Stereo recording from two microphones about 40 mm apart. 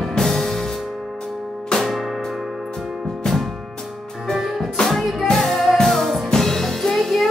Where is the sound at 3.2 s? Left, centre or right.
Centre.